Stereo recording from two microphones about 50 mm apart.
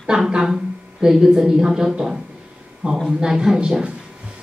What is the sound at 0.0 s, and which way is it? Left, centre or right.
A woman's voice, centre.